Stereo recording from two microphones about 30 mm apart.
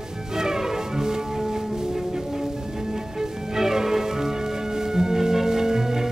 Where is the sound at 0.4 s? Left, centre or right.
Centre.